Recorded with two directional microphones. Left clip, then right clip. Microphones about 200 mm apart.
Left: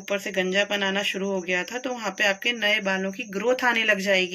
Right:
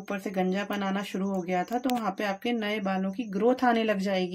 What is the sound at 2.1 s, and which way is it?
Speech, 40° right (ahead or behind).